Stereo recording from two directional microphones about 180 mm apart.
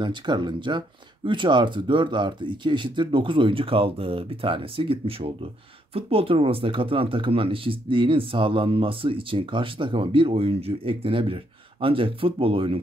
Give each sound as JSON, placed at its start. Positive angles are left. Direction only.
{"t": 0.0, "sound": "speech", "side_deg": -25}